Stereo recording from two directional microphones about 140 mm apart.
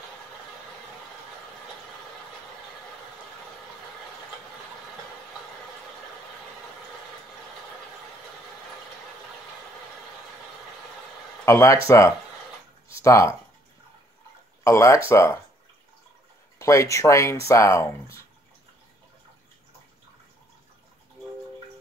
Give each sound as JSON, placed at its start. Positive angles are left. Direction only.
{"t": 11.4, "sound": "speech", "side_deg": 20}
{"t": 13.0, "sound": "speech", "side_deg": 20}
{"t": 14.6, "sound": "speech", "side_deg": 20}
{"t": 16.5, "sound": "speech", "side_deg": 20}